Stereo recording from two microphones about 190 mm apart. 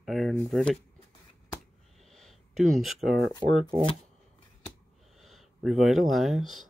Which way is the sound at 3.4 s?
25° right (ahead or behind).